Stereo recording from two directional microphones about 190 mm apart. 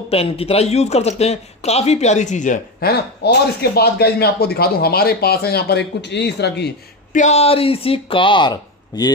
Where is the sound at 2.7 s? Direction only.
55° left (ahead or behind).